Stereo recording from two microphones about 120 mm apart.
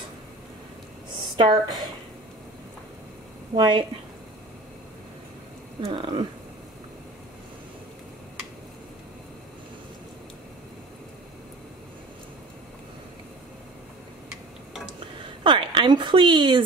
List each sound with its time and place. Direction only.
1.3 s speech: 40° right (ahead or behind)
3.5 s speech: 40° right (ahead or behind)
5.9 s speech: 45° right (ahead or behind)
15.4 s a woman's voice: 40° right (ahead or behind)